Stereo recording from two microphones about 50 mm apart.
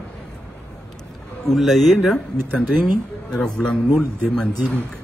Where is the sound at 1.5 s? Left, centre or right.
Centre.